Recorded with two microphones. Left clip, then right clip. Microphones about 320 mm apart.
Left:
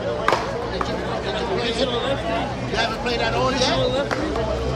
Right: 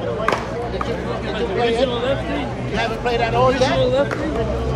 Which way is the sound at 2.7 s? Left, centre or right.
Right.